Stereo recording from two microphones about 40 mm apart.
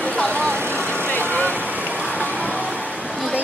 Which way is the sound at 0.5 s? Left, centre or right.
Right.